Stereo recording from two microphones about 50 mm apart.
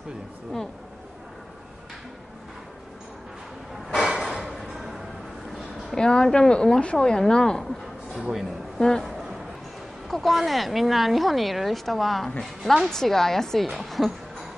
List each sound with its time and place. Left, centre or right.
3.9 s a sound: centre
5.9 s speech: centre
8.1 s speech: centre
8.7 s speech: centre
10.0 s speech: centre